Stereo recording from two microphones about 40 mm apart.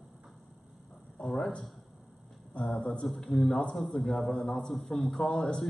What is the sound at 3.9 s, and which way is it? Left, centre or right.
A man's voice, centre.